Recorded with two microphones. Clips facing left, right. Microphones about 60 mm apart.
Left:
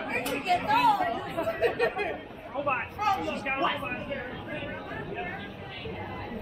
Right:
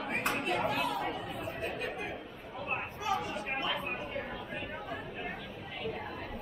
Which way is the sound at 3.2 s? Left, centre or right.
Left.